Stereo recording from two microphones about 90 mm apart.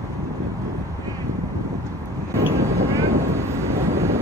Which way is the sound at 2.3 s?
35° right (ahead or behind).